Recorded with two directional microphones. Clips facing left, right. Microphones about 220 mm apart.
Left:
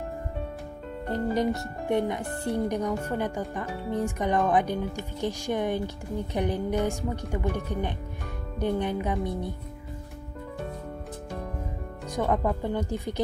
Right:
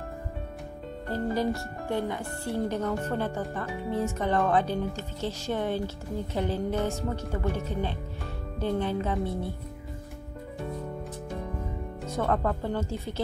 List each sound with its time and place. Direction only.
1.0 s speech: 20° left (ahead or behind)
12.2 s speech: 15° left (ahead or behind)